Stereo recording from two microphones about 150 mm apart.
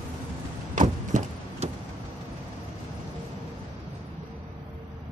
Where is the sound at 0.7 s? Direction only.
55° right (ahead or behind).